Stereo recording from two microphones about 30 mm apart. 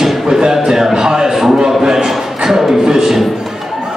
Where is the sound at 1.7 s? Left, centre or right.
Centre.